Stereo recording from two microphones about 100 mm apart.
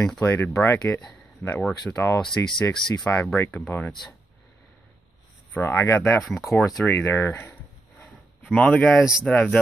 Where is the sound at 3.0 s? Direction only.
20° left (ahead or behind).